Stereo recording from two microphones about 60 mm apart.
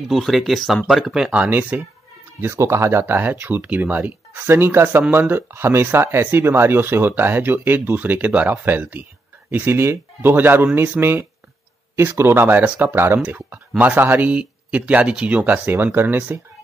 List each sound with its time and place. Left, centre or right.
0.1 s speech: centre
1.5 s speech: right
2.4 s speech: right
3.6 s speech: right